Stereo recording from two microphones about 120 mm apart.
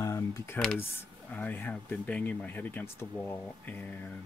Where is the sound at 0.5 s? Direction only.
5° left (ahead or behind).